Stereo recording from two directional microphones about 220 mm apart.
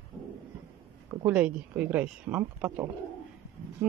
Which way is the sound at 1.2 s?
5° right (ahead or behind).